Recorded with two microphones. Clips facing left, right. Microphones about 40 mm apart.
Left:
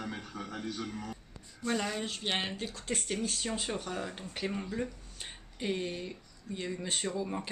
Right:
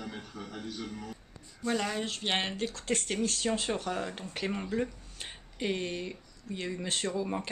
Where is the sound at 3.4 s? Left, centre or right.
Centre.